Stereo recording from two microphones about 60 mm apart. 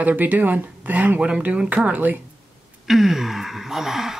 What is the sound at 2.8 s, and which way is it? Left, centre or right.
Speech, centre.